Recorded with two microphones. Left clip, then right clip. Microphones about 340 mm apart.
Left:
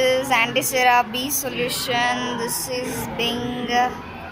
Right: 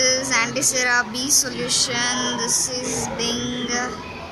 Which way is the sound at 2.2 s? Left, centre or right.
Left.